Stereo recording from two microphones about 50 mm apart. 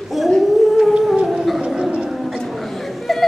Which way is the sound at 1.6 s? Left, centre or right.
Centre.